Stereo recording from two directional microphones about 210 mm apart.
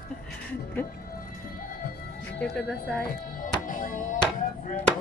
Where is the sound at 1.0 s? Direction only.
45° left (ahead or behind).